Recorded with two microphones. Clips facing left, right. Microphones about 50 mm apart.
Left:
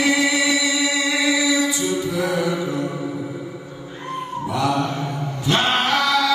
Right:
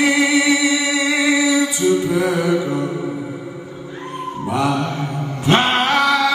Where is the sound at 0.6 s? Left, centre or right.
Right.